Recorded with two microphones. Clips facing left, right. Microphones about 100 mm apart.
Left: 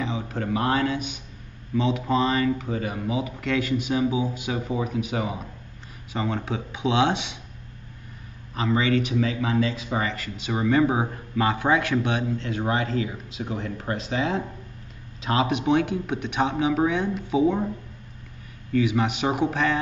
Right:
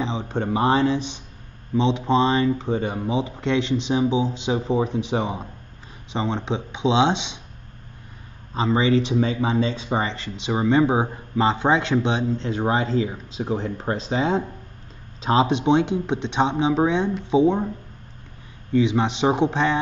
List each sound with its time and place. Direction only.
0.0 s a man's voice: 25° right (ahead or behind)
8.5 s speech: 25° right (ahead or behind)
18.7 s speech: 25° right (ahead or behind)